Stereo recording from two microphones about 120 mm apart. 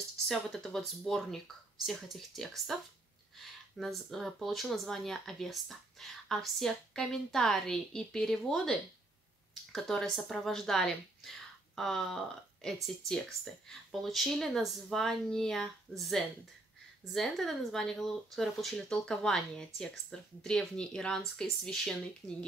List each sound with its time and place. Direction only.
0.3 s speech: 5° left (ahead or behind)